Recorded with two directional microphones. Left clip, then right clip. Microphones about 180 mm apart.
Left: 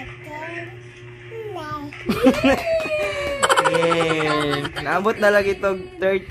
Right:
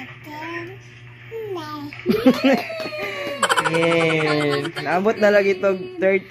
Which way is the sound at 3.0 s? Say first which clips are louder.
Right 3 dB; 5° right (ahead or behind).